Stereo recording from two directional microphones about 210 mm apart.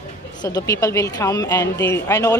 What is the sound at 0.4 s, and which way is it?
Speech, 20° left (ahead or behind).